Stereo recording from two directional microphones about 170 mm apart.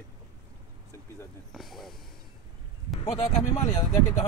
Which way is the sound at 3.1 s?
40° left (ahead or behind).